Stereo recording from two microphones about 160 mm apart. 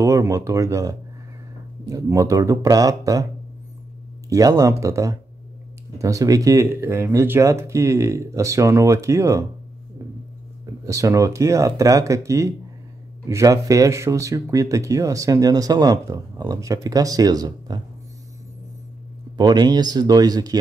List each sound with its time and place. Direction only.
0.0 s speech: 20° right (ahead or behind)
4.3 s speech: 20° right (ahead or behind)
10.9 s speech: 20° right (ahead or behind)
19.3 s speech: 25° right (ahead or behind)